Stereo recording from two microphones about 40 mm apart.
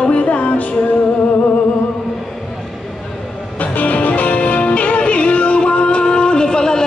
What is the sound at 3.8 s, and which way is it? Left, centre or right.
Music, left.